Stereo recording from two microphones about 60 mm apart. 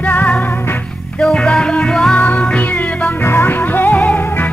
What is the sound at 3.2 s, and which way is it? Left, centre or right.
Music, left.